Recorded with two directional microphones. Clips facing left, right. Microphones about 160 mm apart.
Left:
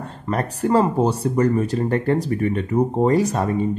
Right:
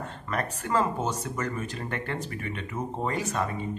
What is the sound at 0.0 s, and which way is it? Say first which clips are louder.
Speech: left 7 dB; 35° left (ahead or behind).